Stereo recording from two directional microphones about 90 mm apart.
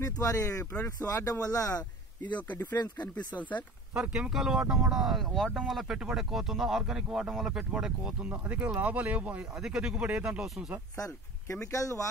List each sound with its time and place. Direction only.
0.0 s speech: 35° left (ahead or behind)
3.3 s speech: 15° left (ahead or behind)
3.9 s speech: 10° right (ahead or behind)
11.0 s speech: 30° left (ahead or behind)